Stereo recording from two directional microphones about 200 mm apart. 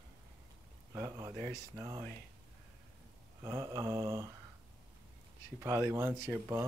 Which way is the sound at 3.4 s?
15° right (ahead or behind).